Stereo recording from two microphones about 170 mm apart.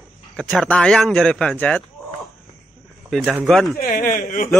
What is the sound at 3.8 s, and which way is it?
Speech, 55° left (ahead or behind).